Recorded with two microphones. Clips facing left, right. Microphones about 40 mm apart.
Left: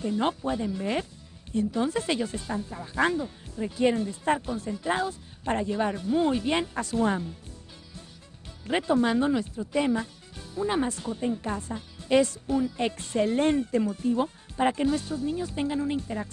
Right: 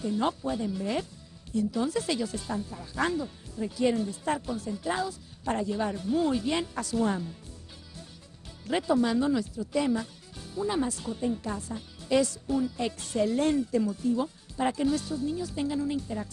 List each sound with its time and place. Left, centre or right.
0.0 s speech: left
8.6 s speech: left